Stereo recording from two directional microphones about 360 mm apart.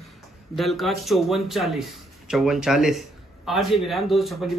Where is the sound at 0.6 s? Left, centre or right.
Centre.